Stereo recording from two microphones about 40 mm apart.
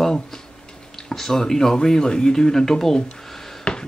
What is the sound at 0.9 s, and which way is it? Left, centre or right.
Speech, centre.